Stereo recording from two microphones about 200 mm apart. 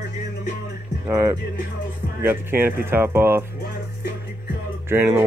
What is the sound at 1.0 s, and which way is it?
Speech, 15° right (ahead or behind).